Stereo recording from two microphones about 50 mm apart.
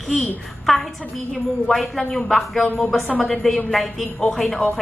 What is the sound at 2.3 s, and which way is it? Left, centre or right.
A woman's voice, centre.